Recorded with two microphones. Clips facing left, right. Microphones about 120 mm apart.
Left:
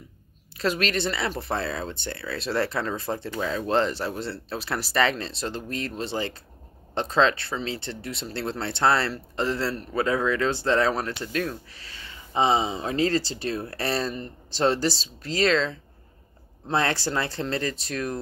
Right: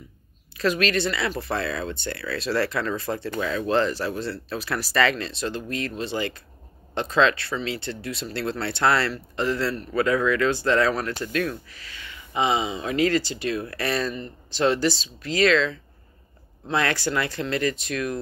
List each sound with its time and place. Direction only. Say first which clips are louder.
0.6 s speech: right 3 dB; 25° left (ahead or behind)